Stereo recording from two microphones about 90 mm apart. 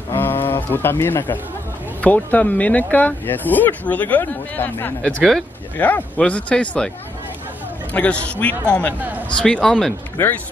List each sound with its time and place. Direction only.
0.1 s bird: 25° left (ahead or behind)
2.0 s speech: 15° left (ahead or behind)
7.9 s speech: 15° left (ahead or behind)